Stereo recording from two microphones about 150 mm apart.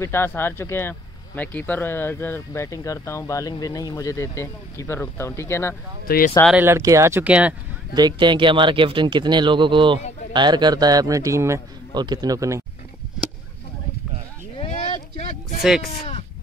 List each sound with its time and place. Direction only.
0.0 s speech: 15° left (ahead or behind)
6.0 s speech: 75° left (ahead or behind)
6.5 s speech: 15° right (ahead or behind)
7.9 s a man's voice: 30° right (ahead or behind)
15.6 s speech: 5° right (ahead or behind)